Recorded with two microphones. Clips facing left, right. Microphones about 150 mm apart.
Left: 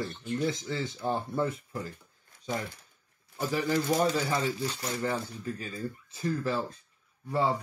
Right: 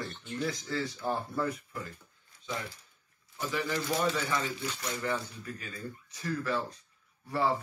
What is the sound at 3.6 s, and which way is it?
Speech, 45° left (ahead or behind).